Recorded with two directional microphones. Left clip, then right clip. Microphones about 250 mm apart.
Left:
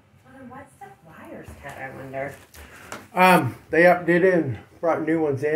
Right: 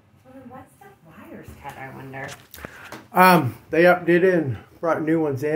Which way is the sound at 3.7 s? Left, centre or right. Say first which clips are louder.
Even; centre.